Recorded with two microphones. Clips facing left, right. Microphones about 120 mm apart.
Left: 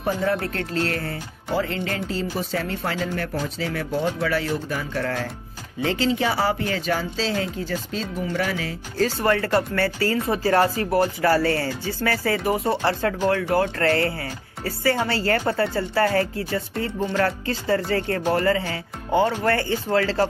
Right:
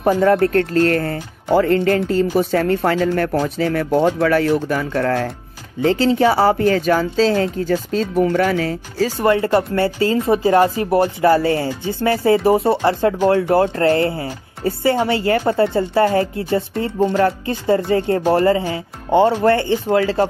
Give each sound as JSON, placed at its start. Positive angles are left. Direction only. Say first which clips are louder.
{"t": 0.2, "sound": "speech", "louder": "right 10 dB", "side_deg": -50}
{"t": 5.8, "sound": "speech", "louder": "right 7 dB", "side_deg": -35}
{"t": 9.2, "sound": "speech", "louder": "right 7 dB", "side_deg": -20}